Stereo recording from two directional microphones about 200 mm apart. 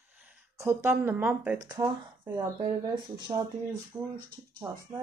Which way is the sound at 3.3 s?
30° right (ahead or behind).